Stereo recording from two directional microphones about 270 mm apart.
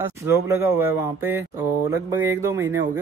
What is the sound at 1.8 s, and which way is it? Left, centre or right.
Speech, centre.